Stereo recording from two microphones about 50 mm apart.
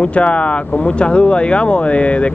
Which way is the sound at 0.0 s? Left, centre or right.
Left.